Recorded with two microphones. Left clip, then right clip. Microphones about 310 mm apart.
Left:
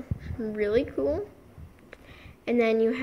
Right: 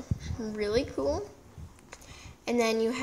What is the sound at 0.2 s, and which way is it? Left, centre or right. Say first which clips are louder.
Speech: left 5 dB; centre.